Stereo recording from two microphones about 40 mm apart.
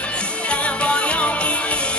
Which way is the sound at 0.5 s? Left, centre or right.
Left.